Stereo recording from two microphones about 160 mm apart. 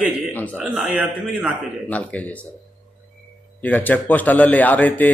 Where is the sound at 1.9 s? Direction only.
10° left (ahead or behind).